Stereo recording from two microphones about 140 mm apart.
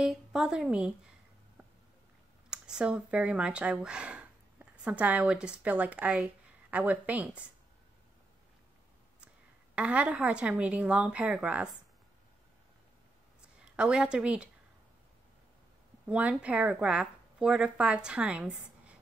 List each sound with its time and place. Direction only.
0.0 s a woman's voice: 5° right (ahead or behind)
2.5 s a woman's voice: 5° right (ahead or behind)
9.8 s a woman's voice: 10° right (ahead or behind)
13.6 s a woman's voice: 5° right (ahead or behind)
16.1 s a woman's voice: 10° right (ahead or behind)